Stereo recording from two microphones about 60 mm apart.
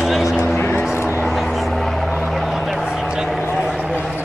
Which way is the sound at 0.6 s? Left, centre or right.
Left.